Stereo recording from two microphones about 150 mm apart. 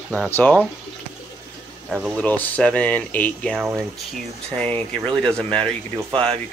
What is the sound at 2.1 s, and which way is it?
Speech, 10° left (ahead or behind).